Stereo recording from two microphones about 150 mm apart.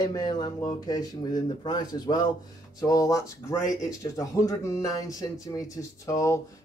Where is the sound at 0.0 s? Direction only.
25° left (ahead or behind).